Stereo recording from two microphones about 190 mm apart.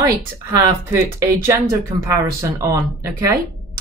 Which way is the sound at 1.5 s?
15° right (ahead or behind).